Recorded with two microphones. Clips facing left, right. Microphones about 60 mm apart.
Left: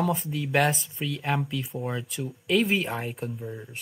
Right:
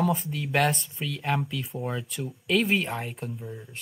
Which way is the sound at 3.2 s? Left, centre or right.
Centre.